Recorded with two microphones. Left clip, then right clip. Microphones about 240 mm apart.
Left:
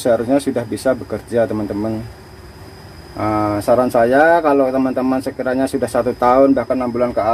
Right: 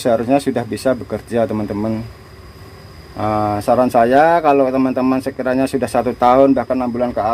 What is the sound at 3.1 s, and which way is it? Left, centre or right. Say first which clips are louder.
Speech: even; right.